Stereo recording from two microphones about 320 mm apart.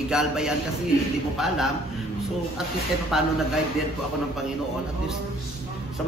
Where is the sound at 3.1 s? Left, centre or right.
Centre.